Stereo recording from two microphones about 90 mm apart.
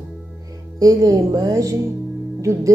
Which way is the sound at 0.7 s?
40° right (ahead or behind).